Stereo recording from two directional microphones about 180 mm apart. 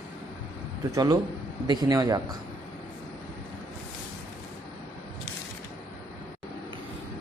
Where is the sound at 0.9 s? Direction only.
20° right (ahead or behind).